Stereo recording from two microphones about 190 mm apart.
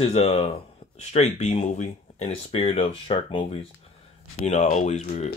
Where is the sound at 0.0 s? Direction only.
35° left (ahead or behind).